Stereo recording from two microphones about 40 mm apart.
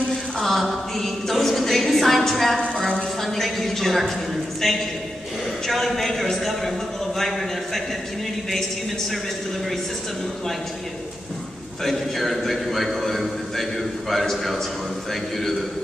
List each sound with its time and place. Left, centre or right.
0.1 s mantra: centre
3.2 s a man's voice: centre
11.8 s a man's voice: centre